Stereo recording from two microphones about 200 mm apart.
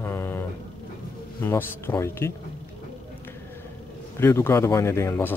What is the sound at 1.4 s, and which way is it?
Speech, 10° left (ahead or behind).